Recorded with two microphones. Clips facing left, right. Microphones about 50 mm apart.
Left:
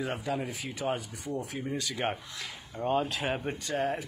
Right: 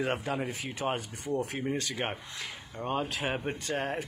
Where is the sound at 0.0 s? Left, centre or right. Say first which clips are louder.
Right 1 dB; right.